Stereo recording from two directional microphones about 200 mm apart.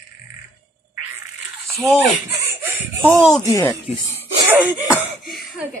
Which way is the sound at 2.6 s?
10° right (ahead or behind).